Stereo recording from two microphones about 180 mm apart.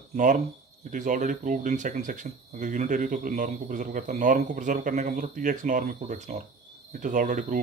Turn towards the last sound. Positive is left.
turn(degrees=-45)  # may be behind; listen again after turning